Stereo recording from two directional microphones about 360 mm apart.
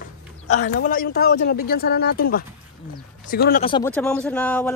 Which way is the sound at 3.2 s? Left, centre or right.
Left.